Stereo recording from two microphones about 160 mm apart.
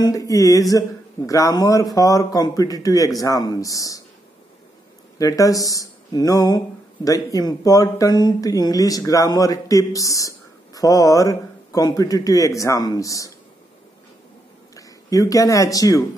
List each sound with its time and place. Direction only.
0.0 s speech: 20° left (ahead or behind)
5.2 s speech: 20° left (ahead or behind)
14.8 s speech: 20° left (ahead or behind)